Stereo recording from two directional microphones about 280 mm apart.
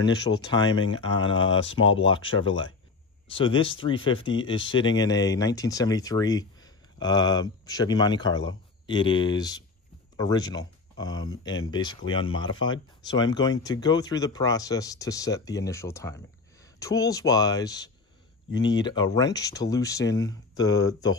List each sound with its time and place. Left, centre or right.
0.0 s speech: centre